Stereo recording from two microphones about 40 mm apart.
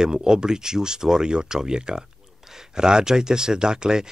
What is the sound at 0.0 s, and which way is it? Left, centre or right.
Speech, centre.